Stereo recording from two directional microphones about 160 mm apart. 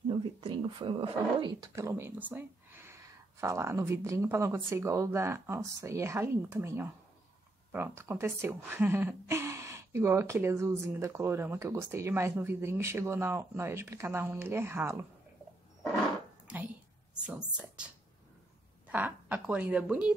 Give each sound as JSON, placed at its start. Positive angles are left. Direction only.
{"t": 0.1, "sound": "a woman's voice", "side_deg": -30}
{"t": 16.4, "sound": "a sound", "side_deg": -10}
{"t": 17.3, "sound": "a woman's voice", "side_deg": -5}
{"t": 18.9, "sound": "a woman's voice", "side_deg": -10}